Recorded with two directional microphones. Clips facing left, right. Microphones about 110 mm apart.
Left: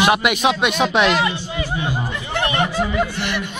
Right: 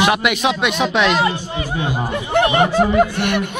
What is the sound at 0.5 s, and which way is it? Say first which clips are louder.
Speech: even; 15° left (ahead or behind).